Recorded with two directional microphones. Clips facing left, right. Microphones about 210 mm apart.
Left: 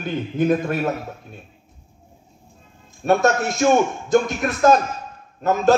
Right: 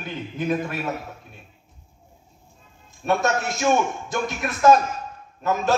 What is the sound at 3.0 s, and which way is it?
A man's voice, 45° left (ahead or behind).